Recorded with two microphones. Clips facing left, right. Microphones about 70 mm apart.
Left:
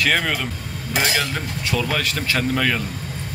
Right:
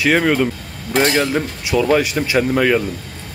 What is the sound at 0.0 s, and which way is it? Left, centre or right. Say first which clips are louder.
Speech: right 6 dB; centre.